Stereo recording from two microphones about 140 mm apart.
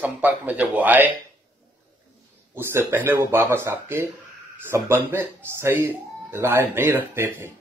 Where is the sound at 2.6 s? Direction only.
15° right (ahead or behind).